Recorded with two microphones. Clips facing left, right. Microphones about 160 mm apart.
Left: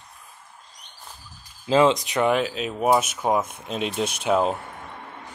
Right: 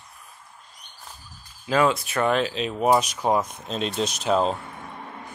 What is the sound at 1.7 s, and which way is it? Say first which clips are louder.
Speech: left 3 dB; 20° left (ahead or behind).